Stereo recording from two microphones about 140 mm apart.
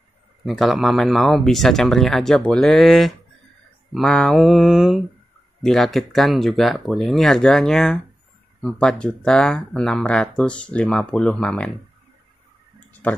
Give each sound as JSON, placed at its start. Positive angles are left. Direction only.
{"t": 0.5, "sound": "speech", "side_deg": 0}
{"t": 13.0, "sound": "speech", "side_deg": 10}